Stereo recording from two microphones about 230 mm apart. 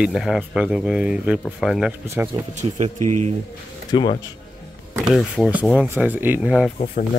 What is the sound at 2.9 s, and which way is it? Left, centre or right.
Speech, right.